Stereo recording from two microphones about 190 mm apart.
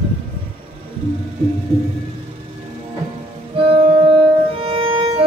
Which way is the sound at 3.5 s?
30° right (ahead or behind).